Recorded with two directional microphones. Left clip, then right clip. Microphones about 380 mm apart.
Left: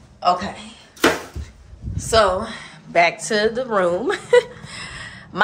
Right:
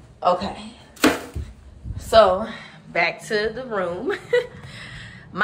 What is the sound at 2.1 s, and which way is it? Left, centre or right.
A woman's voice, centre.